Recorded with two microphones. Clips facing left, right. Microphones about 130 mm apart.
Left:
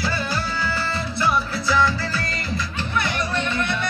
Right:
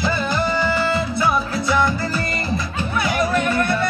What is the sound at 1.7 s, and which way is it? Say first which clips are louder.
Music: right 1 dB; 20° right (ahead or behind).